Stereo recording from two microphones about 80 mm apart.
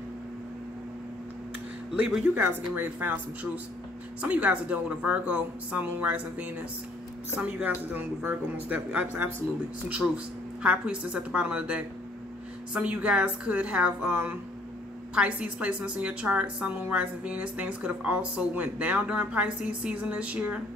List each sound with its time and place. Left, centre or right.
2.0 s a woman's voice: centre
2.3 s speech: right
4.2 s a woman's voice: centre
15.1 s a woman's voice: centre